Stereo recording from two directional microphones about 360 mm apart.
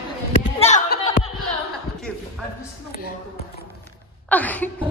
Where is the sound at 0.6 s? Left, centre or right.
Centre.